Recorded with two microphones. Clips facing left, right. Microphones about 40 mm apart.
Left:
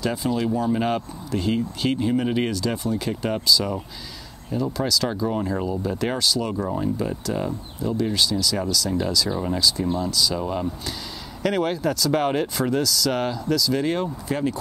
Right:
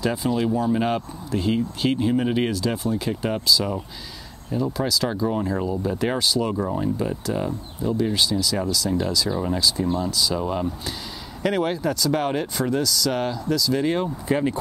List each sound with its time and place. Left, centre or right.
0.0 s speech: centre
14.2 s speech: right